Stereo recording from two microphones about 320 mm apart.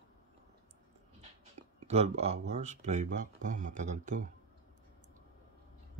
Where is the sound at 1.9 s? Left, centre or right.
Centre.